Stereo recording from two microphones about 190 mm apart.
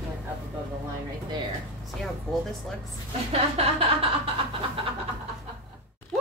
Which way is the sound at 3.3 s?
30° right (ahead or behind).